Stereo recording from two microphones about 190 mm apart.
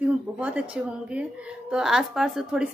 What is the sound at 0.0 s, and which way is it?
A woman's voice, 5° right (ahead or behind).